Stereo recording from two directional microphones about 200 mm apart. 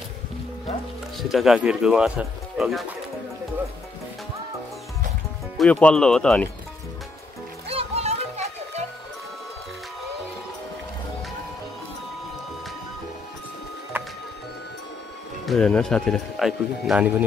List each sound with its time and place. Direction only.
1.1 s speech: centre (ahead or behind)
5.6 s speech: 5° left (ahead or behind)
7.6 s music: 30° right (ahead or behind)
15.4 s speech: centre (ahead or behind)